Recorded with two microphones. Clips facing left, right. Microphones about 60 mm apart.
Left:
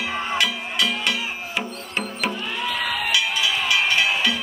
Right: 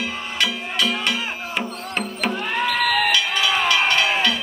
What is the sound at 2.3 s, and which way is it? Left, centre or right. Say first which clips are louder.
Music: right 5 dB; right.